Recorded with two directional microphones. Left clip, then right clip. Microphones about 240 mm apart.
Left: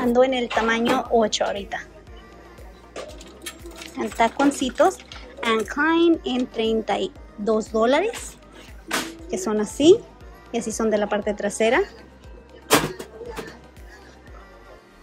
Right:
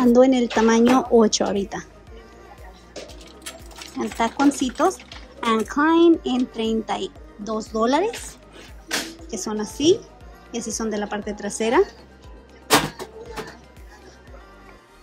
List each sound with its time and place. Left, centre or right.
0.0 s speech: right
4.2 s speech: centre
9.3 s speech: centre
12.6 s vehicle: centre